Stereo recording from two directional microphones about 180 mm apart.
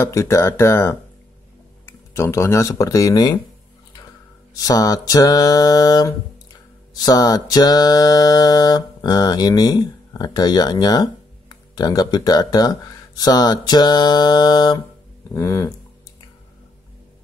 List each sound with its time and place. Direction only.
0.0 s speech: 15° left (ahead or behind)
4.6 s mantra: 20° left (ahead or behind)
15.3 s speech: 15° left (ahead or behind)